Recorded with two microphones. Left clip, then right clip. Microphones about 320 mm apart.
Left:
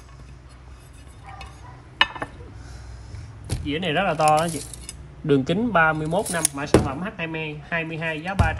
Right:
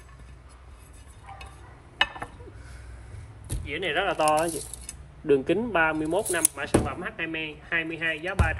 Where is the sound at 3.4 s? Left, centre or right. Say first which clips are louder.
Left 6 dB; centre.